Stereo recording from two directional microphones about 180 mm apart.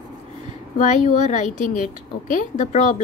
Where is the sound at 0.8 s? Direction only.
45° left (ahead or behind).